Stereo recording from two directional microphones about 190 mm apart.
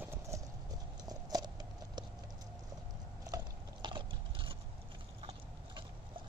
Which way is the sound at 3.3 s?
25° right (ahead or behind).